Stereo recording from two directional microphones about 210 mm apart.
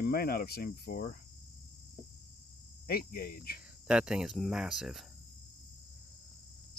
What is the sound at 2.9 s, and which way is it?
Cricket, 45° left (ahead or behind).